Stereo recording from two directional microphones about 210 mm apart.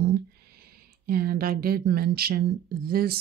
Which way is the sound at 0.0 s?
45° right (ahead or behind).